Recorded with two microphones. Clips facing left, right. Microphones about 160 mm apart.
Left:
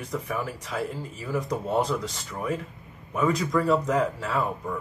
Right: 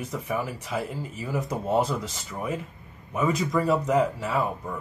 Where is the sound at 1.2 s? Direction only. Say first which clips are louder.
Left 1 dB; 15° right (ahead or behind).